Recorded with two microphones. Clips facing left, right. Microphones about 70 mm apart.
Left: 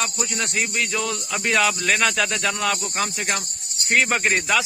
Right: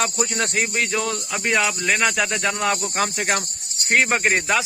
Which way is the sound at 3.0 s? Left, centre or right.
Right.